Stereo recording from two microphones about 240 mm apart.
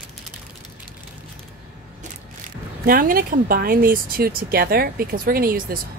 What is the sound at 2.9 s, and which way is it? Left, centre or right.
Speech, right.